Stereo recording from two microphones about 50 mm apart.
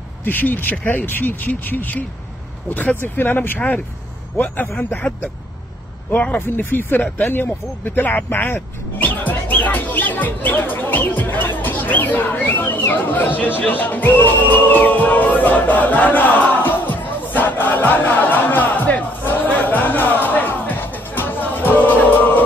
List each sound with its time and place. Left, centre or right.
0.2 s speech: left
3.5 s speech: left
6.3 s speech: left
13.6 s music: left